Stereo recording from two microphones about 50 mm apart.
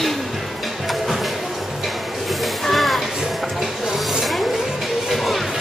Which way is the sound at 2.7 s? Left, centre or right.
Centre.